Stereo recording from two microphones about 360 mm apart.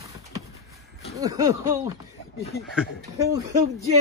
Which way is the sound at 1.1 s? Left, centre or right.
Centre.